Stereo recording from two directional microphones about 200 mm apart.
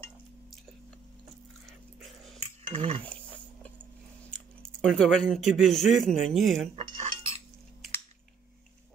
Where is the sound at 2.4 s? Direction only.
30° right (ahead or behind).